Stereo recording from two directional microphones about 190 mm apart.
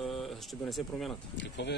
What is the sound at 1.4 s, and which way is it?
Speech, 65° left (ahead or behind).